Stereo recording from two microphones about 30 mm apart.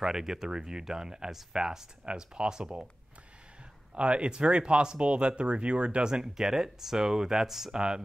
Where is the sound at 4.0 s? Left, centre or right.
Right.